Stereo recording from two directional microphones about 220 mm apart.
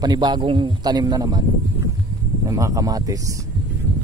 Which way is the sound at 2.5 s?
15° right (ahead or behind).